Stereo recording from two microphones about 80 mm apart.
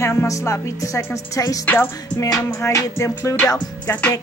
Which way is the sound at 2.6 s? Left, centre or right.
Left.